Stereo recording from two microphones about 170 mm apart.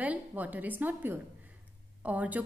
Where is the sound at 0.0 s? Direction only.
10° right (ahead or behind).